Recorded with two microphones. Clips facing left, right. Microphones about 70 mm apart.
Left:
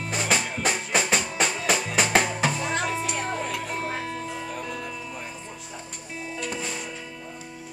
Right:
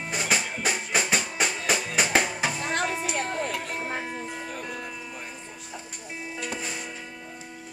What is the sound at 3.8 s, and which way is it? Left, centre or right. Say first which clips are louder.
Music: left 2 dB; centre.